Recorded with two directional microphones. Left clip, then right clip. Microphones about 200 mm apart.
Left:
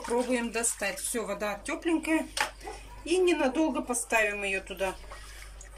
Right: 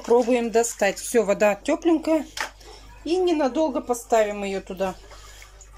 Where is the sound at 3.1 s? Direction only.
20° right (ahead or behind).